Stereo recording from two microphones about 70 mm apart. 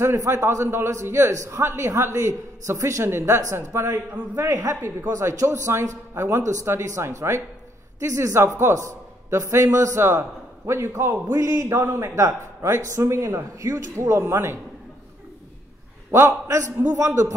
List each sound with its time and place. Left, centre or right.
0.0 s a man's voice: right
1.8 s a woman's voice: right
5.1 s a man's voice: right
16.1 s a woman's voice: right